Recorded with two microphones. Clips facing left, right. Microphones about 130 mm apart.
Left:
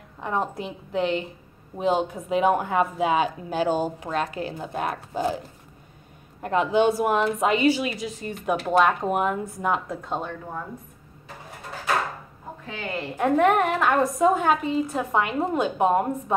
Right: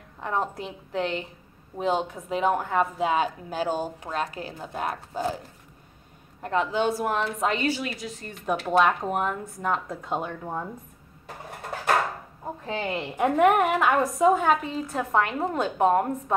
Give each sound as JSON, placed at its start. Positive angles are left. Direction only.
{"t": 0.2, "sound": "a woman's voice", "side_deg": 10}
{"t": 6.4, "sound": "a woman's voice", "side_deg": 15}
{"t": 12.6, "sound": "a woman's voice", "side_deg": -25}
{"t": 13.2, "sound": "a woman's voice", "side_deg": -10}